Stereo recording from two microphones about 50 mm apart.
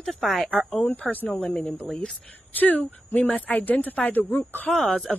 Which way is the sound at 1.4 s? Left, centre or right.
Centre.